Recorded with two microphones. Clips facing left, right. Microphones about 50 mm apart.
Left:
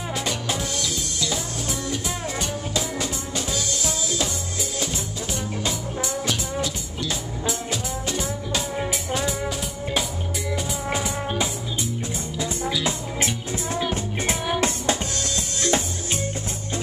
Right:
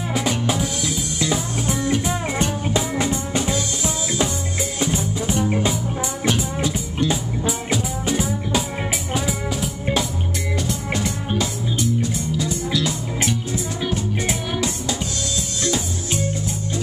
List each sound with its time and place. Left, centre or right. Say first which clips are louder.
0.1 s music: right 6 dB; centre
1.3 s music: right 5 dB; right
7.1 s music: right 5 dB; centre
10.7 s music: right 2 dB; centre
14.6 s music: left 1 dB; left